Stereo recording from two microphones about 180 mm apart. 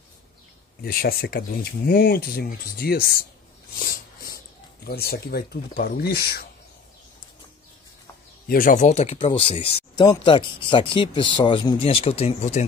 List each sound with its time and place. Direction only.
0.8 s speech: 55° left (ahead or behind)
3.8 s snort: 55° left (ahead or behind)
4.8 s speech: 60° left (ahead or behind)
8.5 s speech: 50° left (ahead or behind)